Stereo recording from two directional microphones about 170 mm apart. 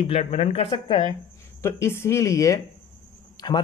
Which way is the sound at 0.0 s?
35° left (ahead or behind).